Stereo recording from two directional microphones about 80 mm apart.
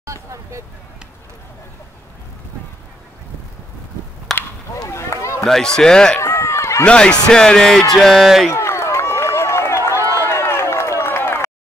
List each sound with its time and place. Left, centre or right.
0.0 s vehicle: right
4.3 s a sound: centre
4.9 s run: left
5.4 s speech: centre
6.2 s run: left
6.8 s speech: centre
7.9 s a sound: centre
8.5 s run: left